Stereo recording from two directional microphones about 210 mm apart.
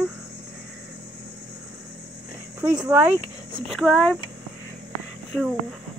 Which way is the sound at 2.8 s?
10° right (ahead or behind).